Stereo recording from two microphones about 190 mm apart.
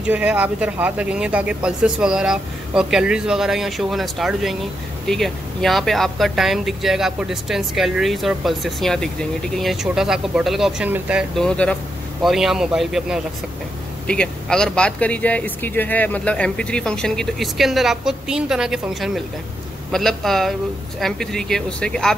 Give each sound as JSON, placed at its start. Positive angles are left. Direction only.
{"t": 0.0, "sound": "speech", "side_deg": -5}